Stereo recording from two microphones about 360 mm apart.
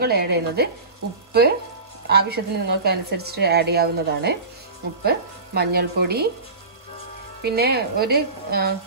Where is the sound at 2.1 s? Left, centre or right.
Right.